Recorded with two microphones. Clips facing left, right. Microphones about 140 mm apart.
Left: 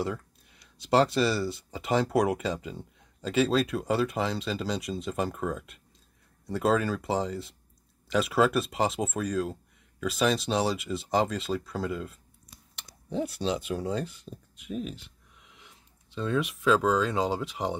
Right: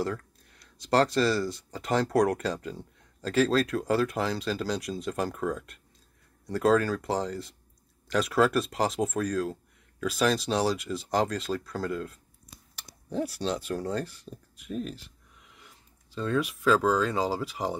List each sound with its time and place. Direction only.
0.0 s speech: centre (ahead or behind)